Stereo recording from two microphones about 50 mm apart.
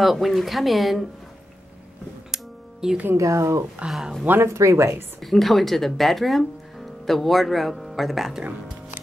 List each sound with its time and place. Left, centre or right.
0.0 s speech: centre
2.3 s music: centre
3.2 s speech: right
5.2 s speech: centre